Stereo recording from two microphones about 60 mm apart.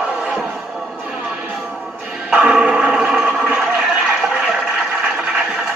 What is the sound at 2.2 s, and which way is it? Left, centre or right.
Music, centre.